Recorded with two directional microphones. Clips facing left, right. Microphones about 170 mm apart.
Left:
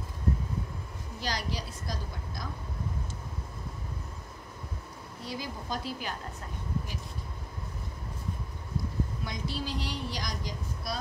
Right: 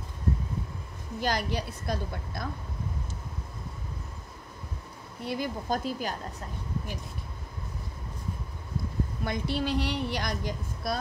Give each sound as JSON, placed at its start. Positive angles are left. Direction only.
{"t": 1.2, "sound": "a woman's voice", "side_deg": -55}
{"t": 5.2, "sound": "speech", "side_deg": -60}
{"t": 9.2, "sound": "a woman's voice", "side_deg": -60}